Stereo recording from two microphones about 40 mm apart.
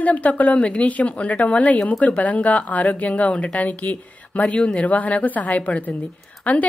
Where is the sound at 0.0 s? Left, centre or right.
Left.